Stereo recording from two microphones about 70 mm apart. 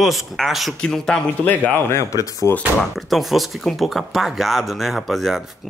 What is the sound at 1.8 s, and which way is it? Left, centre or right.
Speech, left.